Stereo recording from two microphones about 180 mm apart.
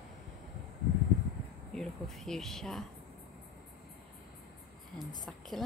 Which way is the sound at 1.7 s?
Centre (ahead or behind).